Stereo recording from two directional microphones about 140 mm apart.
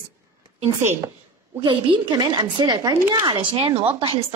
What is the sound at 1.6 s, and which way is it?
Speech, 35° right (ahead or behind).